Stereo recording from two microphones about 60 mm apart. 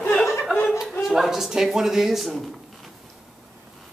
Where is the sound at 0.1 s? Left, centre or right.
Centre.